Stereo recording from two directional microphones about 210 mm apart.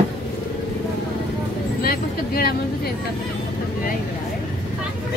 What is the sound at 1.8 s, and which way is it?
Speech, 45° left (ahead or behind).